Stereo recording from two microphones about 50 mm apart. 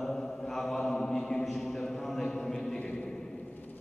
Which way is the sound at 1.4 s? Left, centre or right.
Centre.